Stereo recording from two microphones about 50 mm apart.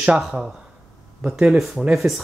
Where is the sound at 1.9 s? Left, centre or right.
Centre.